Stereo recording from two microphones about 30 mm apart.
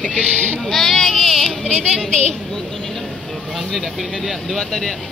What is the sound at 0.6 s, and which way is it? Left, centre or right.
Speech, centre.